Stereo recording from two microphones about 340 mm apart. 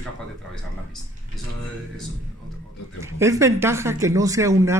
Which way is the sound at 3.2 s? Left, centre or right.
Centre.